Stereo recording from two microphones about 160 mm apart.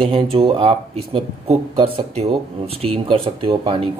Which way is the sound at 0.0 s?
35° right (ahead or behind).